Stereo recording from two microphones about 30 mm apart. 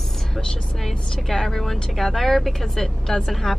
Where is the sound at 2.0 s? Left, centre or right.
Centre.